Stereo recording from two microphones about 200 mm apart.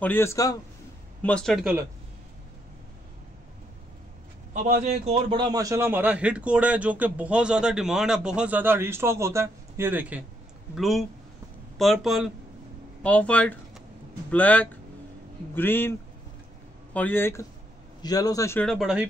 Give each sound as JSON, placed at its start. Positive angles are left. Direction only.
{"t": 0.0, "sound": "a man's voice", "side_deg": 10}
{"t": 1.2, "sound": "speech", "side_deg": 5}
{"t": 4.8, "sound": "a man's voice", "side_deg": -35}
{"t": 18.7, "sound": "speech", "side_deg": 0}